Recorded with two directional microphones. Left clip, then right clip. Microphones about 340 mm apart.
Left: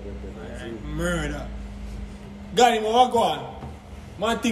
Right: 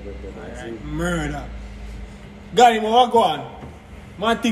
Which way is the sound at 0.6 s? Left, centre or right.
Centre.